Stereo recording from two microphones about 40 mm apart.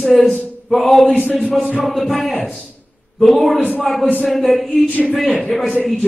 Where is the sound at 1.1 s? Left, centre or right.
Left.